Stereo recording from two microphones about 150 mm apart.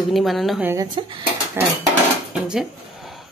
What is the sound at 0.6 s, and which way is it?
Speech, 25° right (ahead or behind).